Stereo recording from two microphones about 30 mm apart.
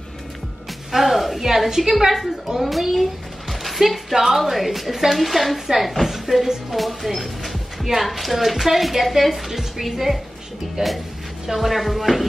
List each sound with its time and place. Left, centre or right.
0.9 s music: centre
1.8 s a woman's voice: centre
10.8 s speech: centre
11.4 s speech: centre